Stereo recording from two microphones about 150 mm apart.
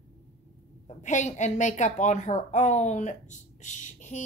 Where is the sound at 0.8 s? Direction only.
55° left (ahead or behind).